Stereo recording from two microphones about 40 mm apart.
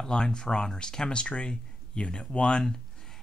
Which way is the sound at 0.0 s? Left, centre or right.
Centre.